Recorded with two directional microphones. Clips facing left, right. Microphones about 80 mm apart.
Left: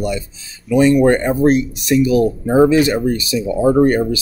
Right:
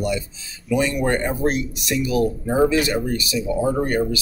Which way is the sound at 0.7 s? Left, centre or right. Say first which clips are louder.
Left 9 dB; left.